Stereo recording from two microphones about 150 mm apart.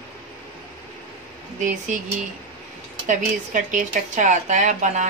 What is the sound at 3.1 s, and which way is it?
Speech, 55° right (ahead or behind).